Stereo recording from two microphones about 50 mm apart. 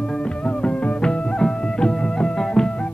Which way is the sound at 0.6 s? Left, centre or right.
Left.